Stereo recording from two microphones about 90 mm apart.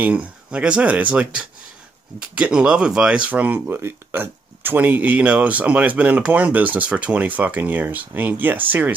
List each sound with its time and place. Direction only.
0.0 s speech: 15° right (ahead or behind)